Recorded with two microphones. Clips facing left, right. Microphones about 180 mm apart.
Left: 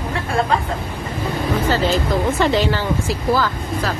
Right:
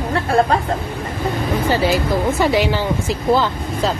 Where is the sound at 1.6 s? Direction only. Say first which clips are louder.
Right 2 dB; 10° right (ahead or behind).